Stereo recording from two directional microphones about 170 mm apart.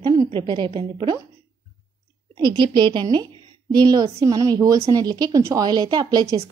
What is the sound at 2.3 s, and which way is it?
A woman's voice, 25° right (ahead or behind).